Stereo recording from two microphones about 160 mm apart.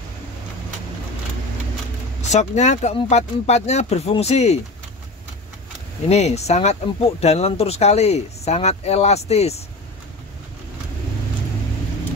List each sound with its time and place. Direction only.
2.2 s speech: 45° left (ahead or behind)
6.0 s speech: 40° left (ahead or behind)